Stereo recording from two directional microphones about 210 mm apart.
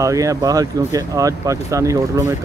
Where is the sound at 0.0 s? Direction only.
15° right (ahead or behind).